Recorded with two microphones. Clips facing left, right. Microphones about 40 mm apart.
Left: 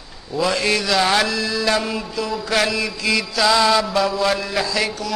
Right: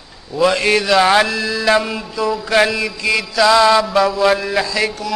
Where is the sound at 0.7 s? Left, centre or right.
Centre.